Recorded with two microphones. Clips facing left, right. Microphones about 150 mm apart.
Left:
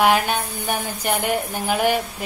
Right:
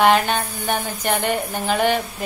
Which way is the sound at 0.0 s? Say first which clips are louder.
Right 2 dB; 5° left (ahead or behind).